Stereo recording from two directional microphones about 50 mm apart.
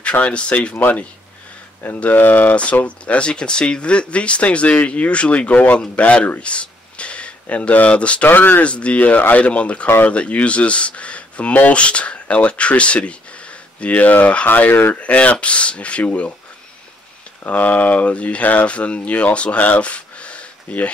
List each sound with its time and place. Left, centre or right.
0.0 s speech: left
0.7 s speech: left
2.0 s speech: left
2.5 s speech: left
8.3 s speech: left
8.6 s speech: left
14.7 s speech: left
15.0 s speech: left
17.5 s speech: left